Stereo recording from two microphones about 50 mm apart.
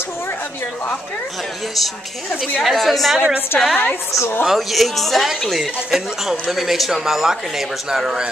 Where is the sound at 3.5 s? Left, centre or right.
Left.